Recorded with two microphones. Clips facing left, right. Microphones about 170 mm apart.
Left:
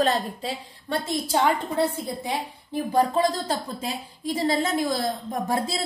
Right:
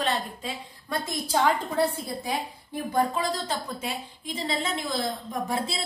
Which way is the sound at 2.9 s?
35° left (ahead or behind).